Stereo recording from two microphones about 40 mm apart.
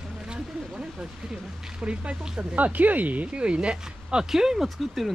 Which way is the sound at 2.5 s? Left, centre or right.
Right.